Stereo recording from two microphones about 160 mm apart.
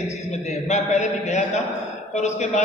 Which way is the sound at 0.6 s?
45° left (ahead or behind).